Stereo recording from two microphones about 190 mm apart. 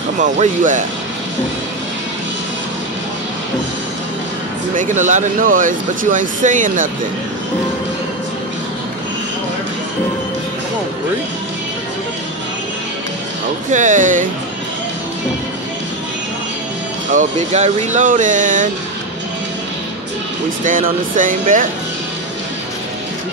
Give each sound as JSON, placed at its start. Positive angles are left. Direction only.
{"t": 0.2, "sound": "speech", "side_deg": -40}
{"t": 4.7, "sound": "speech", "side_deg": -40}
{"t": 13.7, "sound": "speech", "side_deg": -40}
{"t": 17.1, "sound": "speech", "side_deg": -40}
{"t": 20.6, "sound": "speech", "side_deg": -45}